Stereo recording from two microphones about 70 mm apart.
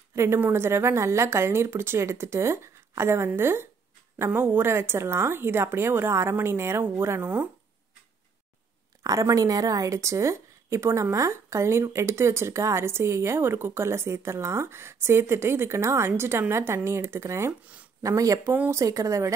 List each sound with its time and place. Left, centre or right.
0.1 s a woman's voice: right
9.0 s speech: right
18.0 s speech: right